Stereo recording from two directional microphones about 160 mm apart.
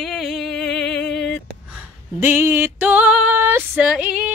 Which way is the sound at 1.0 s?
90° left.